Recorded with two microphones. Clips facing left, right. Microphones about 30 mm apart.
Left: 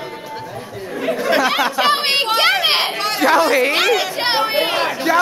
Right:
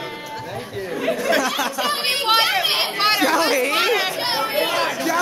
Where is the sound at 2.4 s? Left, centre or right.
Left.